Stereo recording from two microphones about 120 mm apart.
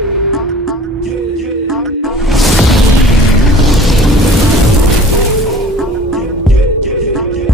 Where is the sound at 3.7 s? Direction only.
Centre (ahead or behind).